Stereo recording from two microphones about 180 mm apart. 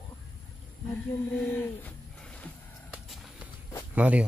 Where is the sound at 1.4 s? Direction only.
10° left (ahead or behind).